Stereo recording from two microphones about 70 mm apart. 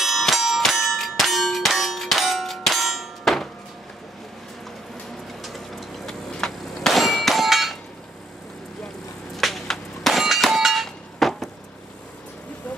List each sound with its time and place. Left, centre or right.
0.0 s clang: centre
5.4 s clang: centre
9.4 s clang: centre